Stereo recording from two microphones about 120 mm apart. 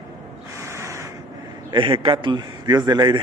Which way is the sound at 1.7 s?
45° right (ahead or behind).